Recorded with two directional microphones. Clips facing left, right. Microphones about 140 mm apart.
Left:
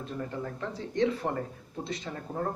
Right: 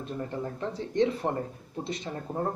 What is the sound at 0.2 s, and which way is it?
Speech, 20° right (ahead or behind).